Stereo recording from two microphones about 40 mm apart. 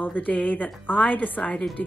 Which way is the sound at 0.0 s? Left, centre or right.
Left.